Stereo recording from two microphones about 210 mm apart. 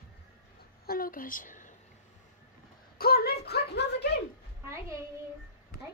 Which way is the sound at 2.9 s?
45° left (ahead or behind).